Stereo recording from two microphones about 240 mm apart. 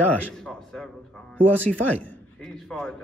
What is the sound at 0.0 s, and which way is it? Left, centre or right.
A man's voice, centre.